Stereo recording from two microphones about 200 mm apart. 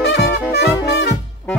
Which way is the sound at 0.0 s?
55° left (ahead or behind).